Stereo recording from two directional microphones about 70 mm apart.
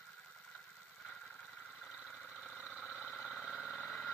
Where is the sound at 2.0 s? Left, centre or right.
Centre.